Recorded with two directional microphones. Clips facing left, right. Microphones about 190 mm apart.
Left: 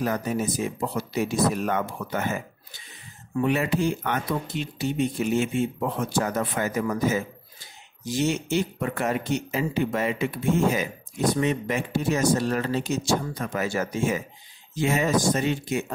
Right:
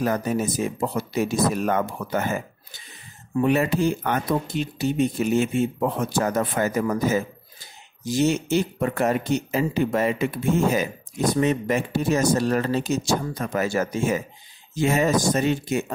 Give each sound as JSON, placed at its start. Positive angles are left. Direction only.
{"t": 0.7, "sound": "speech", "side_deg": -45}
{"t": 3.4, "sound": "speech", "side_deg": -40}